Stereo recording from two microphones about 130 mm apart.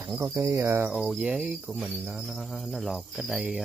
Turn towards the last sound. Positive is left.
turn(degrees=-5)  # may be behind; listen again after turning